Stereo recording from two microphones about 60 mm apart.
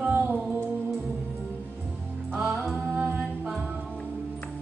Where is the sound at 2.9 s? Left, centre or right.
Right.